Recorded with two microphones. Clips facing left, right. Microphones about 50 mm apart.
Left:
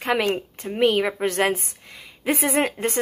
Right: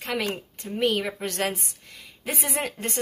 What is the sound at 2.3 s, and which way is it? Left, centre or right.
Speech, left.